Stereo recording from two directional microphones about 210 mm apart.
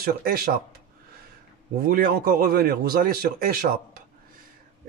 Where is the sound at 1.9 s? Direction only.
45° right (ahead or behind).